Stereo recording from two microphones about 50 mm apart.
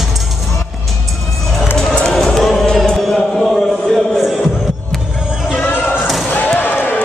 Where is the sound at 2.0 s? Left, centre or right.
Centre.